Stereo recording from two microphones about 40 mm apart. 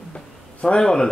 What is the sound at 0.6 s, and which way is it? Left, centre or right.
Speech, centre.